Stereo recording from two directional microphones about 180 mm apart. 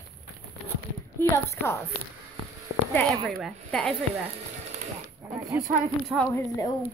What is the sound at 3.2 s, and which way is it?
Speech, centre (ahead or behind).